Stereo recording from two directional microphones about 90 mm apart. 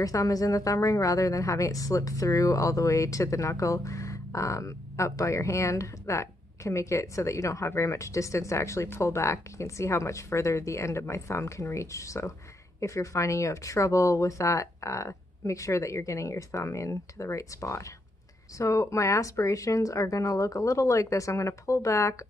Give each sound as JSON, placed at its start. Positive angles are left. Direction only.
{"t": 0.0, "sound": "a woman's voice", "side_deg": 40}